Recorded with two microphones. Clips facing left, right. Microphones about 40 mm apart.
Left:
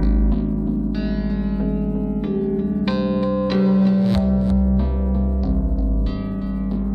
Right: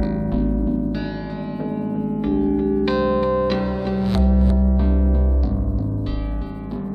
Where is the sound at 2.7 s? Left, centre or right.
Centre.